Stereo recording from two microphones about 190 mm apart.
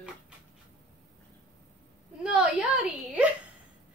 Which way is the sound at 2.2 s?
5° right (ahead or behind).